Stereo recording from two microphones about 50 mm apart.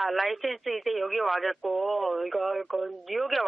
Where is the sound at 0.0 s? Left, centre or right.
Centre.